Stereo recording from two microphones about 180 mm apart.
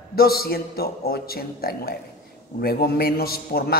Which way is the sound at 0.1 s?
60° left (ahead or behind).